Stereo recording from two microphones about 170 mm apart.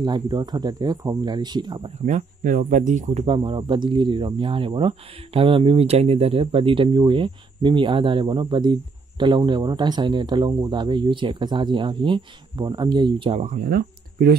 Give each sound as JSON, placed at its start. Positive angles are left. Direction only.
{"t": 0.0, "sound": "speech", "side_deg": -25}
{"t": 2.0, "sound": "speech", "side_deg": -45}
{"t": 13.4, "sound": "speech", "side_deg": -55}